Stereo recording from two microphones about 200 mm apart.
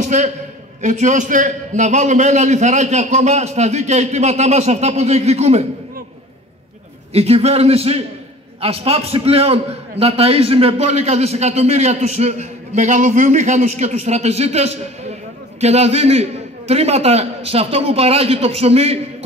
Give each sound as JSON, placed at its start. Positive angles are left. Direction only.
{"t": 0.0, "sound": "a sound", "side_deg": -35}
{"t": 0.8, "sound": "a man's voice", "side_deg": -35}
{"t": 7.2, "sound": "a man's voice", "side_deg": -30}